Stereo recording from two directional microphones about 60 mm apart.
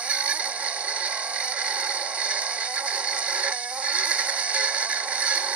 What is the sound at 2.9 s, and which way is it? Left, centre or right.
Music, centre.